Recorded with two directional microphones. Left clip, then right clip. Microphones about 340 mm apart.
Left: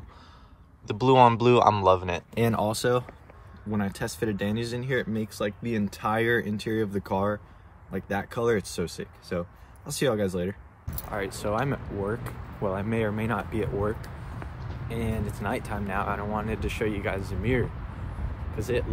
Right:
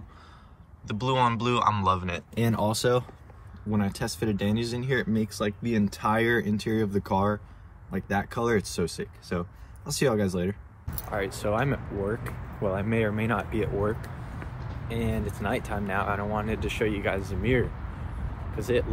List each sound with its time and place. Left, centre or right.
0.8 s a man's voice: centre
2.6 s a man's voice: centre